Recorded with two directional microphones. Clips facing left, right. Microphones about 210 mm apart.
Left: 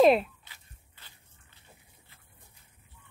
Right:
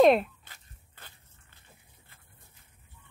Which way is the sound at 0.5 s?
50° right (ahead or behind).